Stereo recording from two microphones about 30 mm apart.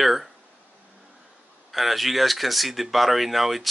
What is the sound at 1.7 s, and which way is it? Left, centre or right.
Speech, centre.